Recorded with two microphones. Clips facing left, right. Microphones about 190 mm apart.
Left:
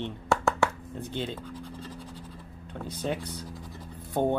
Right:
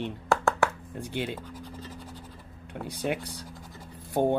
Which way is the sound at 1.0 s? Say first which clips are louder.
Right 1 dB; 10° right (ahead or behind).